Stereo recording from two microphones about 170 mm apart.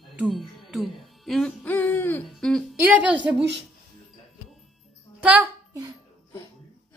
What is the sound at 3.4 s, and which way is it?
Speech, 90° right.